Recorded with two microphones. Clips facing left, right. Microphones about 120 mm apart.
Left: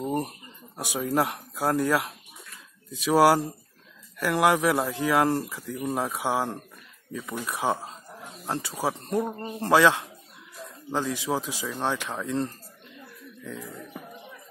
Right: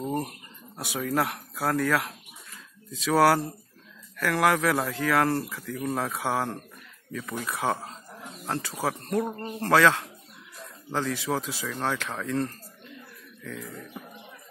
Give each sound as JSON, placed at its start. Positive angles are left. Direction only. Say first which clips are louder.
{"t": 0.0, "sound": "speech", "louder": "left 1 dB", "side_deg": 20}
{"t": 13.4, "sound": "throat clearing", "louder": "even", "side_deg": 15}